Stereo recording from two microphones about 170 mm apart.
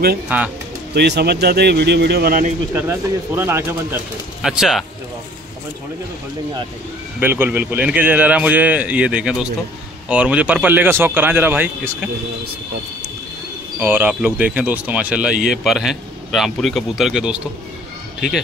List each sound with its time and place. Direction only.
0.3 s a man's voice: 10° right (ahead or behind)
0.9 s speech: 80° right
2.7 s a man's voice: 15° right (ahead or behind)
4.4 s a man's voice: 5° right (ahead or behind)
7.2 s a man's voice: 10° right (ahead or behind)
13.7 s a man's voice: 10° right (ahead or behind)